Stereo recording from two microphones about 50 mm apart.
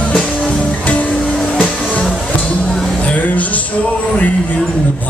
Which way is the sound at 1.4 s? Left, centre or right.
Centre.